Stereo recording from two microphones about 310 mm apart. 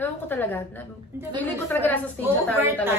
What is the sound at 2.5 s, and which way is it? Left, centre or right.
Speech, centre.